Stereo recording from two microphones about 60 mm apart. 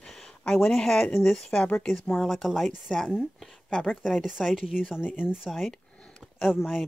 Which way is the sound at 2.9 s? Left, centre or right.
Centre.